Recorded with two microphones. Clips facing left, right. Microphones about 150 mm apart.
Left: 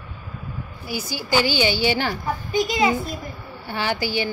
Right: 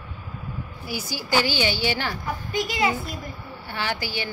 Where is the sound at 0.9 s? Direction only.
Centre (ahead or behind).